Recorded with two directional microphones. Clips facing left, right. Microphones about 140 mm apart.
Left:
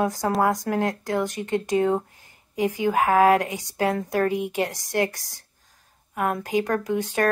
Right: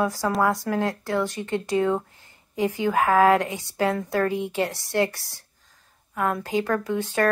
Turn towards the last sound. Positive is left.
turn(degrees=15)  # may be behind; listen again after turning